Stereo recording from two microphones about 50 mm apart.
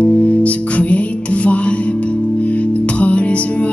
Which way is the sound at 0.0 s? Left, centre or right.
Left.